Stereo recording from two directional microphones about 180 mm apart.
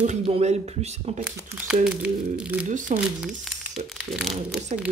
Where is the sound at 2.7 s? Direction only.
45° right (ahead or behind).